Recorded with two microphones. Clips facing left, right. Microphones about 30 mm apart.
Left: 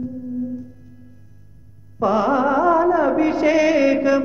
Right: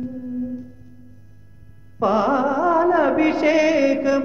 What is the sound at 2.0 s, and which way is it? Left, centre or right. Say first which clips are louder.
Music: even; centre.